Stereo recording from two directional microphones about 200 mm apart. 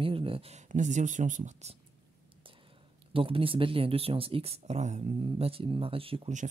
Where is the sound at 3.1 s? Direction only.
25° right (ahead or behind).